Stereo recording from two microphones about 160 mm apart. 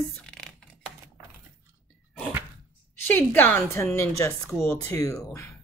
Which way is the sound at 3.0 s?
10° left (ahead or behind).